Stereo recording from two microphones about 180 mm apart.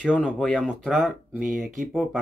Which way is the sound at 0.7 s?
5° right (ahead or behind).